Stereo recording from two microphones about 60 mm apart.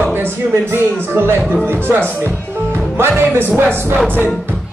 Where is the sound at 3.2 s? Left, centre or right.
Right.